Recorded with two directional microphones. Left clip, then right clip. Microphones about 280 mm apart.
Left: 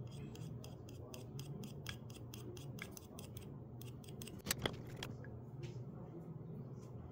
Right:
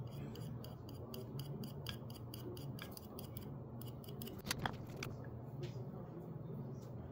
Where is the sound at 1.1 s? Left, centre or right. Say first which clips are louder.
Right 3 dB; left.